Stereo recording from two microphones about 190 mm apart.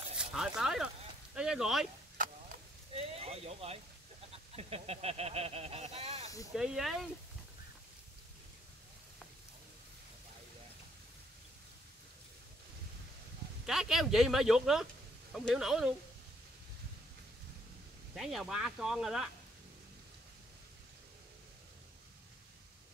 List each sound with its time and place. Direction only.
0.2 s a sound: 5° right (ahead or behind)
0.6 s speech: 5° right (ahead or behind)
2.2 s chop: 45° right (ahead or behind)
2.9 s speech: 30° right (ahead or behind)
6.5 s speech: 5° right (ahead or behind)
13.7 s speech: centre (ahead or behind)
18.1 s speech: centre (ahead or behind)